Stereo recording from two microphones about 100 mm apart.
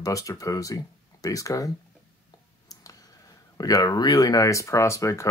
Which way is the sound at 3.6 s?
35° left (ahead or behind).